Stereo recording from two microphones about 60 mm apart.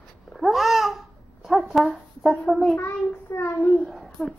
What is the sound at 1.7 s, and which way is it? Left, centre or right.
Speech, centre.